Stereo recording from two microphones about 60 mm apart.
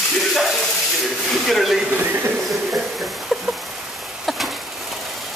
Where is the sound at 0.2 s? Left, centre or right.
Centre.